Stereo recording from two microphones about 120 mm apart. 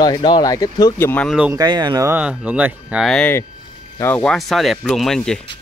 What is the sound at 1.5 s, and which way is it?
Speech, 35° right (ahead or behind).